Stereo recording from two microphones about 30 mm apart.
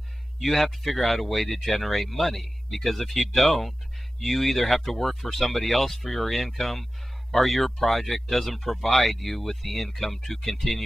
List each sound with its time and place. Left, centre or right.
0.4 s speech: centre